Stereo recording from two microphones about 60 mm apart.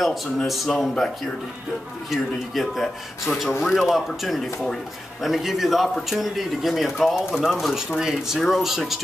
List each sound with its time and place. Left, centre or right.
0.0 s speech: centre